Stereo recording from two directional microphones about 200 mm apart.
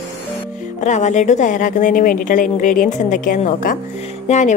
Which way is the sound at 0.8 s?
35° left (ahead or behind).